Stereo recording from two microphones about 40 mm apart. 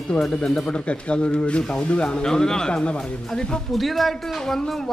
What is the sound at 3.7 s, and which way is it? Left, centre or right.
Speech, centre.